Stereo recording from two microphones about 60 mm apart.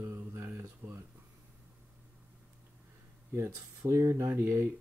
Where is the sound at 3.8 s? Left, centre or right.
Right.